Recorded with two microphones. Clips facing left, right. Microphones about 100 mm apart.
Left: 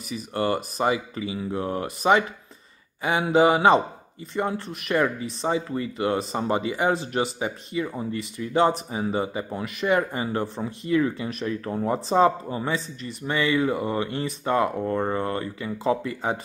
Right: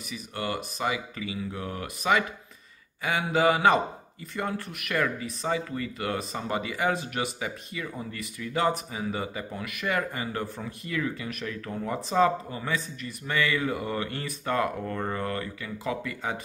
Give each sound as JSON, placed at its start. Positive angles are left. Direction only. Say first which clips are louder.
{"t": 0.1, "sound": "speech", "louder": "left 7 dB", "side_deg": 35}